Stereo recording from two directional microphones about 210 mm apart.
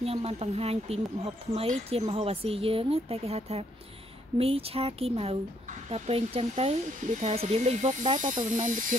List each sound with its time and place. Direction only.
0.0 s speech: 30° right (ahead or behind)